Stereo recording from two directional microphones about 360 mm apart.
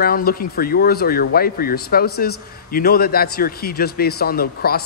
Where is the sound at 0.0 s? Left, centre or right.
Left.